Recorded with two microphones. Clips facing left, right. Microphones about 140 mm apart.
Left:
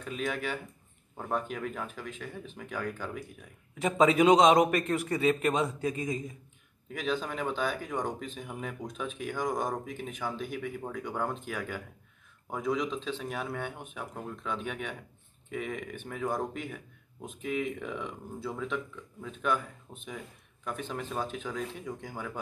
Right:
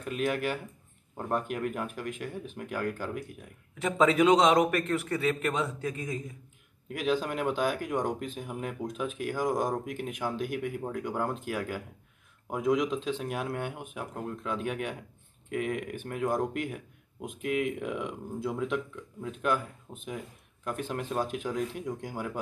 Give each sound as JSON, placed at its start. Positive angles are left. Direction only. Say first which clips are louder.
{"t": 0.0, "sound": "speech", "louder": "right 4 dB", "side_deg": -5}
{"t": 3.8, "sound": "a man's voice", "louder": "even", "side_deg": 15}
{"t": 6.9, "sound": "speech", "louder": "right 3 dB", "side_deg": -10}